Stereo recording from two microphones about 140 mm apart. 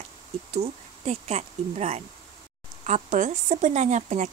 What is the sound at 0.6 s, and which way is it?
Speech, 50° right (ahead or behind).